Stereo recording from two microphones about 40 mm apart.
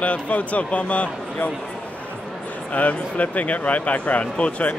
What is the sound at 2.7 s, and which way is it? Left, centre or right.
A man's voice, left.